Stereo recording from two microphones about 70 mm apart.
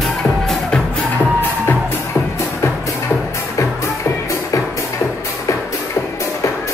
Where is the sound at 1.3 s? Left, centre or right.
Left.